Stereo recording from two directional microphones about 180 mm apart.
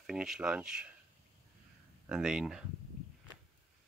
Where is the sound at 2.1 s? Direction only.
5° right (ahead or behind).